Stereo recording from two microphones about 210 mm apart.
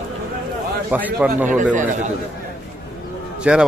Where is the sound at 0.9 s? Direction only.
10° right (ahead or behind).